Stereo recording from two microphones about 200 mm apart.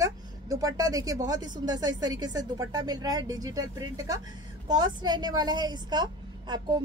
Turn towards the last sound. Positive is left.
turn(degrees=-20)  # may be behind; listen again after turning